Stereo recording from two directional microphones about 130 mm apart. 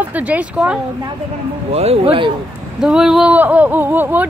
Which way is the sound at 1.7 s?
55° right (ahead or behind).